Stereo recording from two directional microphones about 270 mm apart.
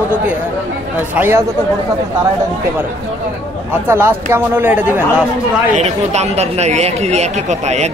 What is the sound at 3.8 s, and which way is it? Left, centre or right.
Speech, centre.